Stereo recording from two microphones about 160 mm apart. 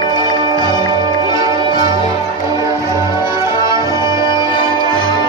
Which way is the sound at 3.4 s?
20° right (ahead or behind).